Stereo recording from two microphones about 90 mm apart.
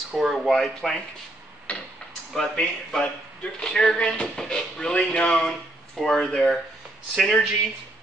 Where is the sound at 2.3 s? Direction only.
10° left (ahead or behind).